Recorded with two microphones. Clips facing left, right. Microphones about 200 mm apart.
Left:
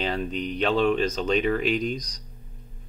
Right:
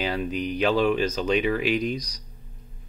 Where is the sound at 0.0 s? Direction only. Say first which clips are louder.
Right 1 dB; 5° right (ahead or behind).